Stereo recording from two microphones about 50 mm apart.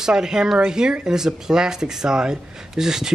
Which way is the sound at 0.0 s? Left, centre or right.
Centre.